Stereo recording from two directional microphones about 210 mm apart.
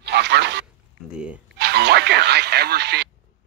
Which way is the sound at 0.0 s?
55° right (ahead or behind).